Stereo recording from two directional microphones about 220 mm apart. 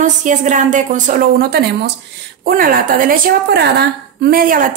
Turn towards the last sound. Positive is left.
turn(degrees=-40)  # may be behind; listen again after turning